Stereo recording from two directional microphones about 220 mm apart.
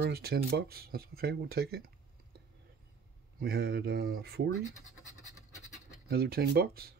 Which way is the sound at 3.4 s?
45° right (ahead or behind).